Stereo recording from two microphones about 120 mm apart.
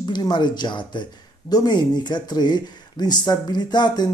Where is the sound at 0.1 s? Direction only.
40° left (ahead or behind).